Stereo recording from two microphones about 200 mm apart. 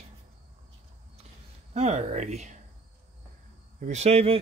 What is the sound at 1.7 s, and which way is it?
Speech, 35° right (ahead or behind).